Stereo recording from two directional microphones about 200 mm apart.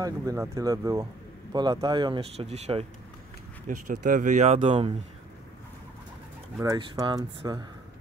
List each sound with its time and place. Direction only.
0.0 s speech: 15° right (ahead or behind)
6.6 s speech: 20° right (ahead or behind)